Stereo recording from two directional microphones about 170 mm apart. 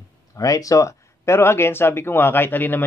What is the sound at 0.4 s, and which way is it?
Speech, 20° left (ahead or behind).